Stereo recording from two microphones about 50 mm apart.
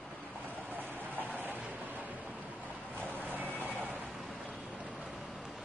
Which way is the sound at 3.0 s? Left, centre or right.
Right.